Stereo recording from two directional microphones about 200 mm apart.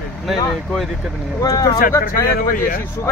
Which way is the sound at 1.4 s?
15° left (ahead or behind).